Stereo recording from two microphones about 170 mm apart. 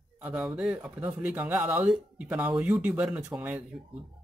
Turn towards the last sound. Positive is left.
turn(degrees=-10)  # may be behind; listen again after turning